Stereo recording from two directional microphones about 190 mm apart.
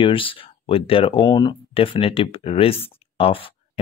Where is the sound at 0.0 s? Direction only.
30° left (ahead or behind).